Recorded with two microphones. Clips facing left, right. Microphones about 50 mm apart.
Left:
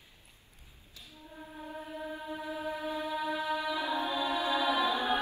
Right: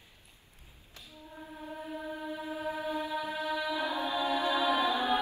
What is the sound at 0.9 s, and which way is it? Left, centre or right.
Music, right.